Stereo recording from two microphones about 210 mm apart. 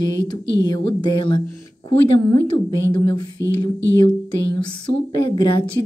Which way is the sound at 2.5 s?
20° left (ahead or behind).